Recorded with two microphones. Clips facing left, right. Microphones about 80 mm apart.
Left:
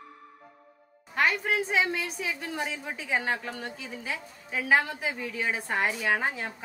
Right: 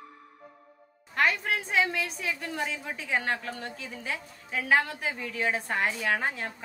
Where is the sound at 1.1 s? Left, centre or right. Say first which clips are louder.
Left 1 dB; centre.